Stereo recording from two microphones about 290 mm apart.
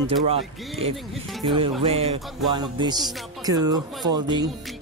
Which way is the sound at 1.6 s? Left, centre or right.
Centre.